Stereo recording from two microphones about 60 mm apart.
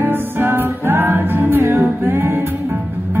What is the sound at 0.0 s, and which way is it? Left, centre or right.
Music, right.